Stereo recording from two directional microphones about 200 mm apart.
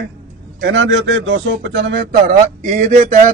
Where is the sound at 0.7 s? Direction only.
70° right (ahead or behind).